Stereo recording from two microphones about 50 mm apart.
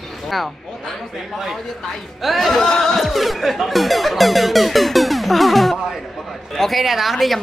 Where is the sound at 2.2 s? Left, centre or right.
Centre.